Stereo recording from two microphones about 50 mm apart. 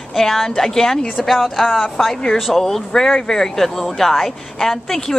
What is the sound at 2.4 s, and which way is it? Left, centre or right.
Speech, centre.